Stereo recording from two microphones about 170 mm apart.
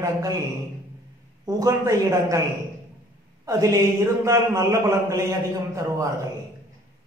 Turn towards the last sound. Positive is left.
turn(degrees=-20)  # may be behind; listen again after turning